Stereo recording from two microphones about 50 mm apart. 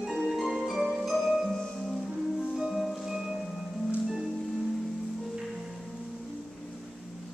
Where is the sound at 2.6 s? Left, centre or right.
Centre.